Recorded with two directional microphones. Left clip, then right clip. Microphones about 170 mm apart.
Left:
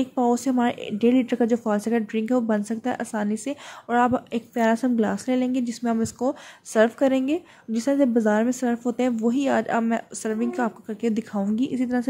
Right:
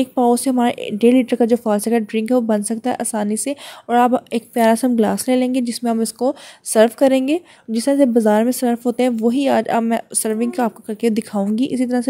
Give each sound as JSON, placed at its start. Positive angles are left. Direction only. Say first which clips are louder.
{"t": 0.0, "sound": "speech", "louder": "right 7 dB", "side_deg": -30}